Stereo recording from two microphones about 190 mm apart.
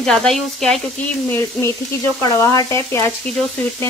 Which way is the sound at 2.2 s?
20° left (ahead or behind).